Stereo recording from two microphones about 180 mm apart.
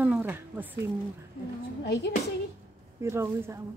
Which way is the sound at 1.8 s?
65° left (ahead or behind).